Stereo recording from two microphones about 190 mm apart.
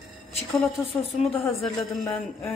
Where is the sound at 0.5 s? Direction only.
Centre (ahead or behind).